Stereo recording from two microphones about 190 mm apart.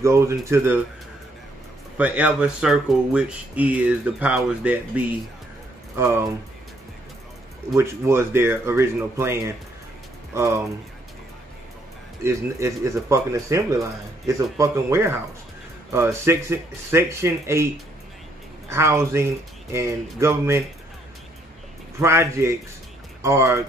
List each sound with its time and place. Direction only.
0.0 s speech: 15° right (ahead or behind)
2.0 s speech: 5° right (ahead or behind)
7.7 s speech: 15° right (ahead or behind)
12.2 s speech: 15° right (ahead or behind)
18.7 s speech: 15° right (ahead or behind)
22.0 s speech: 15° right (ahead or behind)